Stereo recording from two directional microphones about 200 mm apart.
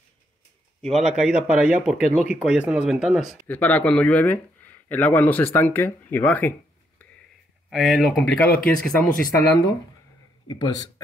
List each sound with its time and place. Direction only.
1.0 s speech: 5° right (ahead or behind)
7.7 s speech: centre (ahead or behind)
9.0 s speech: 45° left (ahead or behind)
10.5 s speech: 20° left (ahead or behind)